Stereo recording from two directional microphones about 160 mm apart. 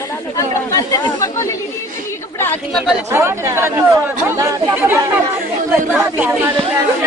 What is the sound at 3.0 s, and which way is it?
Speech, 15° right (ahead or behind).